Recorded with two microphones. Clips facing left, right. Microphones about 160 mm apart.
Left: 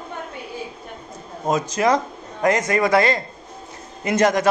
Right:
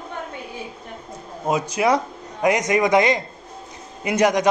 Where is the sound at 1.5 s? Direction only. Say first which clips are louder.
Left 1 dB; 10° right (ahead or behind).